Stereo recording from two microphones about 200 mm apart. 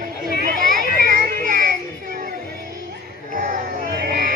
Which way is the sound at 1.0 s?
45° right (ahead or behind).